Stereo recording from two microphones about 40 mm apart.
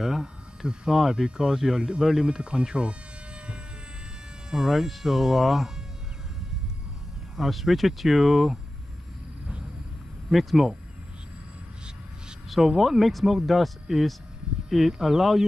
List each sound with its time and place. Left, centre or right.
0.0 s speech: centre
4.5 s speech: centre
7.3 s speech: centre
10.3 s speech: centre
12.6 s speech: centre